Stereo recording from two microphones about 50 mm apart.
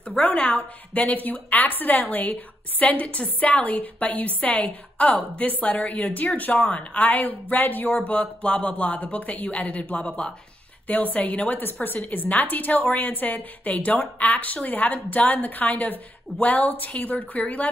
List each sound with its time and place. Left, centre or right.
0.0 s a woman's voice: left
8.1 s a woman's voice: left